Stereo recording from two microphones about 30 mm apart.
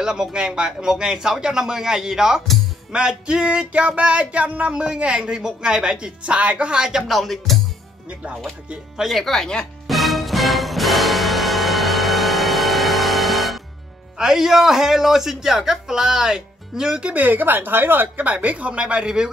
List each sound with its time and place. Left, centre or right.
0.0 s a man's voice: right
0.8 s a man's voice: right
2.9 s a woman's voice: right
3.7 s music: right
4.6 s a woman's voice: right
6.2 s music: right
6.7 s a man's voice: right
7.1 s music: centre
9.2 s speech: centre
9.8 s music: centre
14.3 s speech: centre
17.1 s a woman's voice: right
17.8 s speech: right
18.1 s music: right